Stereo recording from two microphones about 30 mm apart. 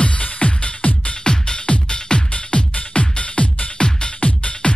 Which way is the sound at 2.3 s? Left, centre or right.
Left.